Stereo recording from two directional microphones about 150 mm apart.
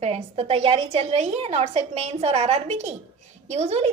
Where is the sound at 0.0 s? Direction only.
40° right (ahead or behind).